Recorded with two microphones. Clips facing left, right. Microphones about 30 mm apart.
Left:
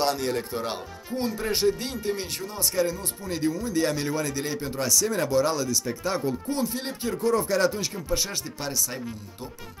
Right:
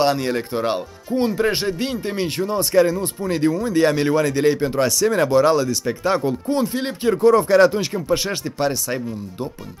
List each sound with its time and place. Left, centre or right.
0.0 s speech: right
1.3 s speech: right